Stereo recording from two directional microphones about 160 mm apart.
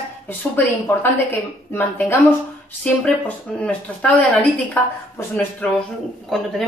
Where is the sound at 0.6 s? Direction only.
15° left (ahead or behind).